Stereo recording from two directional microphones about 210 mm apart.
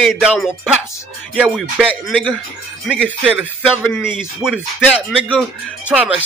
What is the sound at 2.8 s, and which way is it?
Speech, centre (ahead or behind).